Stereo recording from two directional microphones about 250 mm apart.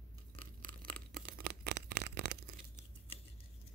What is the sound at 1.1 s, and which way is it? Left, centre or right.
Tearing, right.